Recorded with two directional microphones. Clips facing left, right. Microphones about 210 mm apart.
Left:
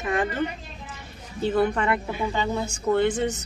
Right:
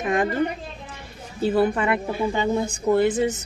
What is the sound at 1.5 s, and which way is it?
Speech, 10° right (ahead or behind).